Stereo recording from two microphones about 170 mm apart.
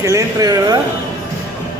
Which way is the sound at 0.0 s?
20° right (ahead or behind).